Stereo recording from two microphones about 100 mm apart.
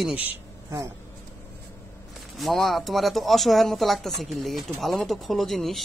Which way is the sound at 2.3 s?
Centre (ahead or behind).